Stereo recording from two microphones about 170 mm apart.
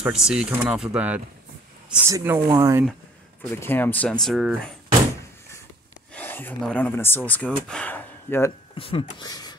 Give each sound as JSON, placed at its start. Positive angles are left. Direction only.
{"t": 0.0, "sound": "speech", "side_deg": -5}
{"t": 3.5, "sound": "speech", "side_deg": 10}
{"t": 6.1, "sound": "speech", "side_deg": 10}
{"t": 8.7, "sound": "speech", "side_deg": 30}